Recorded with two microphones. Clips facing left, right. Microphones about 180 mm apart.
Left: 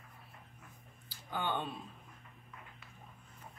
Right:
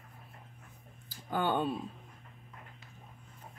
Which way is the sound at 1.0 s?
45° right (ahead or behind).